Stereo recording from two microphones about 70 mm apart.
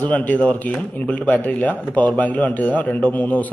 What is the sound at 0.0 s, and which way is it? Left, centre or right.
Speech, left.